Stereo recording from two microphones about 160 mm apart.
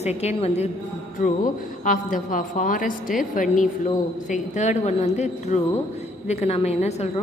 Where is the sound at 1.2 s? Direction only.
60° left (ahead or behind); by 7.2 s 45° left (ahead or behind).